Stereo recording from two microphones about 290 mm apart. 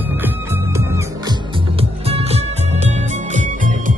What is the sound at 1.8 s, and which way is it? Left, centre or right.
Music, right.